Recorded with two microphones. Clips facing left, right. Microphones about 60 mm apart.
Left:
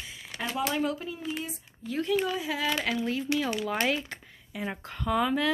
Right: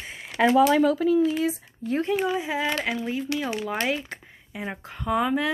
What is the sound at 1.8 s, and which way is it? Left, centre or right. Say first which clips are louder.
Speech: right 5 dB; right.